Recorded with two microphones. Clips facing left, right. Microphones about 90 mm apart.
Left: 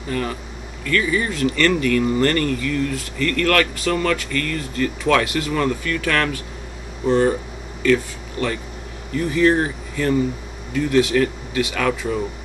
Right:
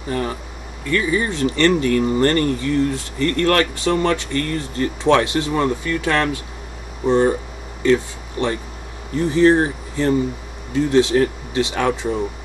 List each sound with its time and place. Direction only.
0.1 s speech: 30° right (ahead or behind)